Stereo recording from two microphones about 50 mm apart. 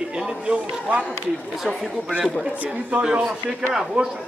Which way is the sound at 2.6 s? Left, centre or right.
Right.